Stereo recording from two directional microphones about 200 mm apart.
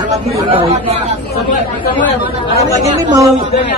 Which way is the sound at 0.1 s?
30° right (ahead or behind).